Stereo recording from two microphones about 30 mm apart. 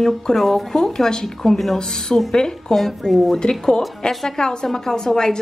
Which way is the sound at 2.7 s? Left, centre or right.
Centre.